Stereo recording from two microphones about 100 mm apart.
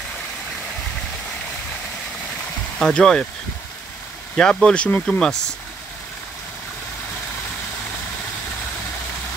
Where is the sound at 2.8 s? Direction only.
5° left (ahead or behind).